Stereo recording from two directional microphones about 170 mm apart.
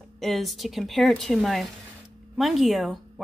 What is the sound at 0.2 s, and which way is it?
A woman's voice, centre (ahead or behind).